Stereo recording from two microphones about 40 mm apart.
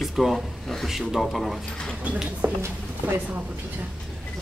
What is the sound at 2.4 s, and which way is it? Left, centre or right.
Speech, right.